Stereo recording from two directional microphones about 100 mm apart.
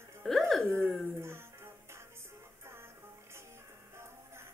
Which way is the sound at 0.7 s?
25° right (ahead or behind).